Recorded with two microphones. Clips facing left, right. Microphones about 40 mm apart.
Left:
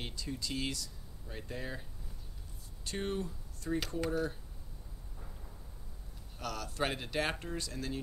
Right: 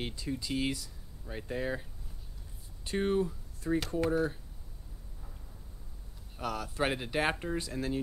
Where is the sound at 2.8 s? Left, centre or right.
Centre.